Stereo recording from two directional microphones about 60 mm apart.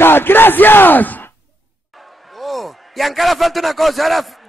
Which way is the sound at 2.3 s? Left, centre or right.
Centre.